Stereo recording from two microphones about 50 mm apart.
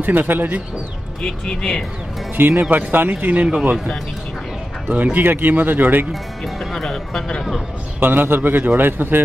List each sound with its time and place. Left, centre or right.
0.0 s speech: right
1.2 s speech: centre
2.3 s a man's voice: right
4.8 s speech: right
6.4 s speech: centre
8.0 s a man's voice: right